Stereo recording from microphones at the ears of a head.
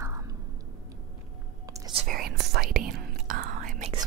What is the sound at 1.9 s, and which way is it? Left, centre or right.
Whispering, right.